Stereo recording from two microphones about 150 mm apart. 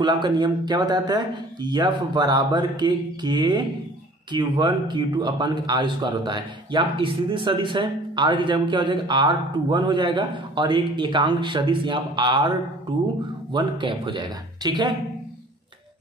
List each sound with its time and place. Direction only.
0.0 s a man's voice: 30° right (ahead or behind)